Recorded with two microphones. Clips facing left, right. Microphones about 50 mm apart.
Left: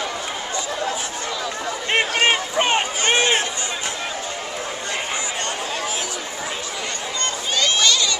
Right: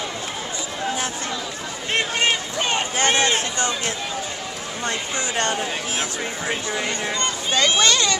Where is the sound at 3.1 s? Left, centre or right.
Left.